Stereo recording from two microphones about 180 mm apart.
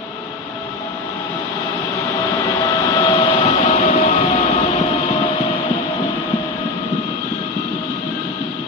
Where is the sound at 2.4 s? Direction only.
20° left (ahead or behind).